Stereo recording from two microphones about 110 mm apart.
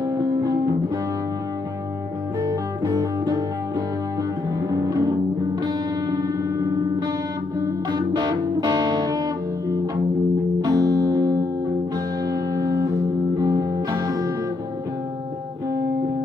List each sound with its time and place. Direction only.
0.0 s music: 35° right (ahead or behind)
2.4 s music: 35° right (ahead or behind)
4.6 s music: 35° right (ahead or behind)